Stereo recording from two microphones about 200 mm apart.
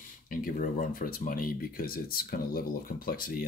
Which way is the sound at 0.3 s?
45° left (ahead or behind).